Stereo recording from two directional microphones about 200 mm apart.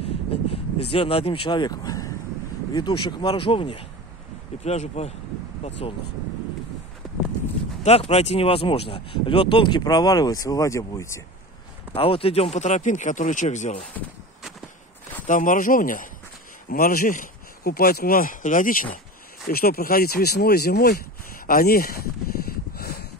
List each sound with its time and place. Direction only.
0.0 s a sound: 30° left (ahead or behind)
2.7 s speech: 25° left (ahead or behind)
7.8 s speech: 30° left (ahead or behind); by 11.1 s 15° left (ahead or behind)
11.9 s speech: 25° left (ahead or behind)
15.2 s speech: 40° left (ahead or behind)
22.5 s a sound: 50° left (ahead or behind)